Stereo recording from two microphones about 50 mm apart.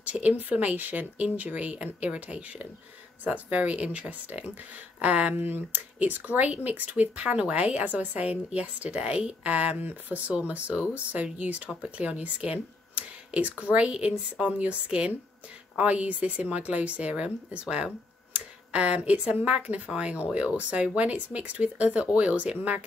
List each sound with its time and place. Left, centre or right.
0.0 s speech: right